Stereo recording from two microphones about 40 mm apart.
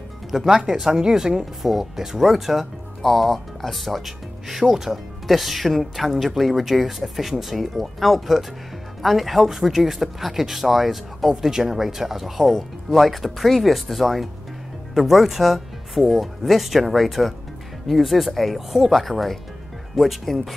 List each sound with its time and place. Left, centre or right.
0.3 s speech: centre